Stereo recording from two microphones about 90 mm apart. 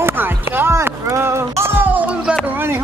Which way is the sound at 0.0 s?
25° right (ahead or behind).